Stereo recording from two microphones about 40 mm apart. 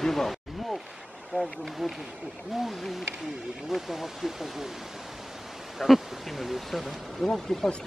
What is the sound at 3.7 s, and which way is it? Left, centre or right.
Speech, centre.